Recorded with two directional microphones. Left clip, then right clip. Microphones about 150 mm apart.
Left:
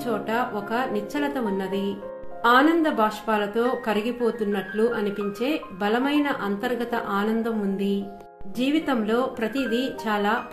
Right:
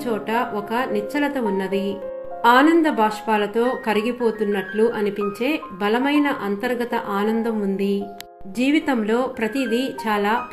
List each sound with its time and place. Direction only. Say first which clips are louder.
0.0 s speech: right 3 dB; 15° right (ahead or behind)